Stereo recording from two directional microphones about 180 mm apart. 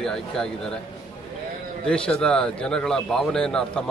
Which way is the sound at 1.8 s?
5° left (ahead or behind).